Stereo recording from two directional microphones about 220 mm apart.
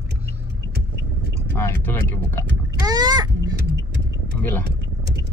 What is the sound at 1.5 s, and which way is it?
Speech, 10° left (ahead or behind).